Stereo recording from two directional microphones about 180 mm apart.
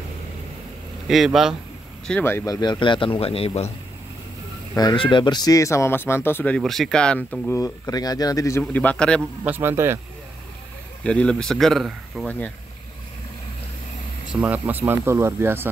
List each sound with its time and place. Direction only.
1.0 s speech: centre (ahead or behind)
2.0 s a man's voice: 10° left (ahead or behind); by 3.7 s 35° left (ahead or behind)
4.7 s speech: 25° left (ahead or behind); by 9.2 s 5° left (ahead or behind)
9.4 s speech: 10° right (ahead or behind)
11.1 s speech: 5° left (ahead or behind)
14.4 s speech: 10° right (ahead or behind)